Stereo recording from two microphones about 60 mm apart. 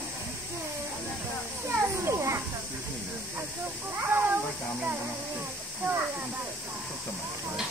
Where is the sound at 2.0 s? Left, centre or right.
Right.